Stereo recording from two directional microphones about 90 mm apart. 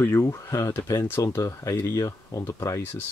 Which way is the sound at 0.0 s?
30° left (ahead or behind).